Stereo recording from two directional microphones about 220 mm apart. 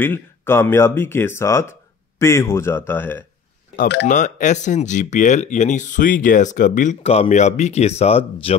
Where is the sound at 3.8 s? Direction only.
50° left (ahead or behind).